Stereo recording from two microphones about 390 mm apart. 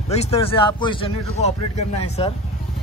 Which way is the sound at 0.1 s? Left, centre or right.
Centre.